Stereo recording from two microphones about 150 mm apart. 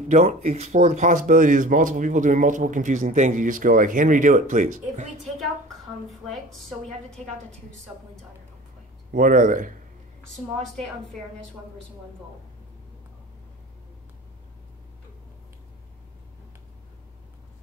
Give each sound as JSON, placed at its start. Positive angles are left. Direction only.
{"t": 0.1, "sound": "speech", "side_deg": -45}
{"t": 7.9, "sound": "speech", "side_deg": -15}
{"t": 9.1, "sound": "speech", "side_deg": -65}